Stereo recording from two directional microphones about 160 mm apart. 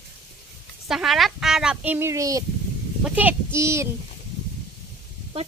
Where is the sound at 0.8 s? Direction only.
Centre (ahead or behind); by 2.4 s 20° right (ahead or behind).